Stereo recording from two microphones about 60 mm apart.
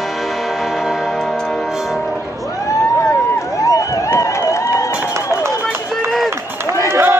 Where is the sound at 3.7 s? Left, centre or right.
Left.